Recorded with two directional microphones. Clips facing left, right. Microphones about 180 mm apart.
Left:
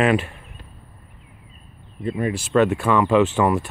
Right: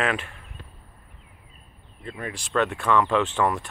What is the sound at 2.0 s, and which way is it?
Speech, 15° left (ahead or behind).